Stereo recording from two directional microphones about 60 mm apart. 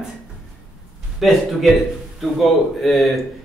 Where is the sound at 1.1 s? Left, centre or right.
Centre.